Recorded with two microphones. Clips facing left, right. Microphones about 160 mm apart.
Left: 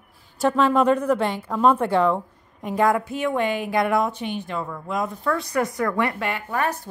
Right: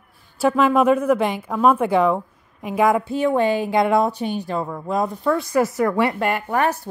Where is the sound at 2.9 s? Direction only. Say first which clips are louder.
Right 4 dB; 30° right (ahead or behind).